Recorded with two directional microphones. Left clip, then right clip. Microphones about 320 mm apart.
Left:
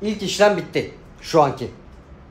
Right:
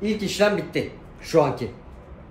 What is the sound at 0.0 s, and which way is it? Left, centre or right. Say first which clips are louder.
A man's voice: left 4 dB; centre.